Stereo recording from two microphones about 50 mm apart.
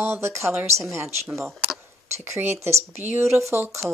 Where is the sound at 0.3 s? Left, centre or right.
Right.